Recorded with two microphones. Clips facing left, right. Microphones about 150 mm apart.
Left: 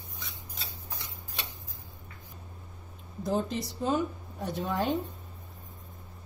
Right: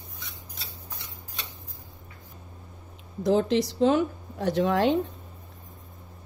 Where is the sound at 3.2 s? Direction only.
90° right.